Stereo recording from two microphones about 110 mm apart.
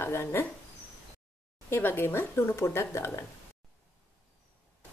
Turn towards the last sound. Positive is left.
turn(degrees=25)  # may be behind; listen again after turning